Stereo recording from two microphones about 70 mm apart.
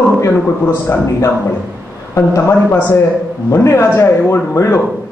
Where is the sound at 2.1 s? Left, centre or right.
Left.